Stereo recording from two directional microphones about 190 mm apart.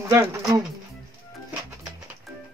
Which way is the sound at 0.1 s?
15° right (ahead or behind).